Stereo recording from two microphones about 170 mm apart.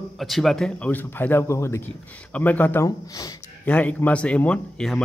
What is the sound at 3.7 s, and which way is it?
Speech, 10° left (ahead or behind).